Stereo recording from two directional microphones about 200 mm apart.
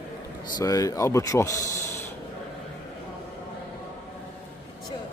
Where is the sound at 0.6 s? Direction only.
15° left (ahead or behind).